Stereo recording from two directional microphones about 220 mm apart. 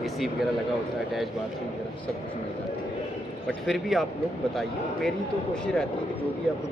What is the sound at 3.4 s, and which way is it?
Speech, centre (ahead or behind).